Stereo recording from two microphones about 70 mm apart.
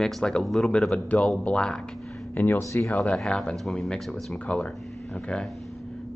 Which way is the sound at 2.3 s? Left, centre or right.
Left.